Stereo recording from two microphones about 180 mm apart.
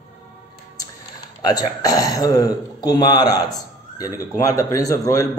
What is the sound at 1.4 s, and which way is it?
A man's voice, 20° left (ahead or behind).